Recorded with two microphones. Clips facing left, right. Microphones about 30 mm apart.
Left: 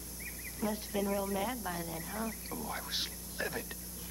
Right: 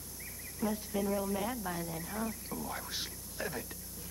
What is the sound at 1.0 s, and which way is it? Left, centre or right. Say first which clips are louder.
A woman's voice: even; centre.